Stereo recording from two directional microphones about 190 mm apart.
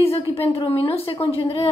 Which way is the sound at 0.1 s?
30° left (ahead or behind).